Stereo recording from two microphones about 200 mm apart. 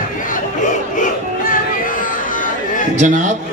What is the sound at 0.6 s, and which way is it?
Battle cry, 40° left (ahead or behind).